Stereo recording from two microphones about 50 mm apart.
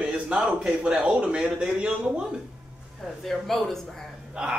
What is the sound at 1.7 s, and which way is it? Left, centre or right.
Speech, centre.